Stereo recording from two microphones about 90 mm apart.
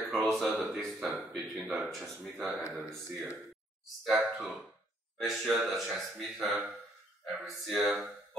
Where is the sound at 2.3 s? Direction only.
15° right (ahead or behind).